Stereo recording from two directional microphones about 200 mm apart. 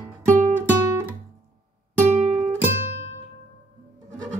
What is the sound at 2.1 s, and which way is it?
Music, 35° right (ahead or behind).